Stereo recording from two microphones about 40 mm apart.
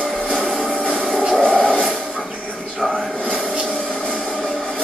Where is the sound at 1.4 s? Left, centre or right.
Left.